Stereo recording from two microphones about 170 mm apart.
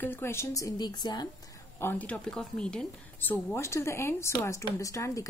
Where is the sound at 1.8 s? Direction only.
10° left (ahead or behind).